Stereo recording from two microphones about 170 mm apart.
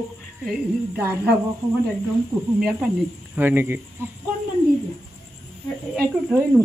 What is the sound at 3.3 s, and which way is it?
Speech, 10° right (ahead or behind).